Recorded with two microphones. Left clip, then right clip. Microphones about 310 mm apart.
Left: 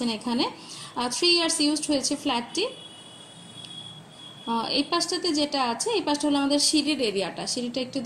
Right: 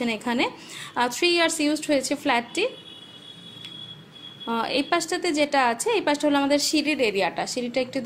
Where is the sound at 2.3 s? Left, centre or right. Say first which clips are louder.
Right 5 dB; centre.